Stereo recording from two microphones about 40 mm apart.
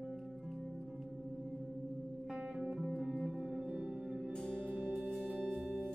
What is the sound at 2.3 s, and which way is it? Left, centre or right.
Guitar, centre.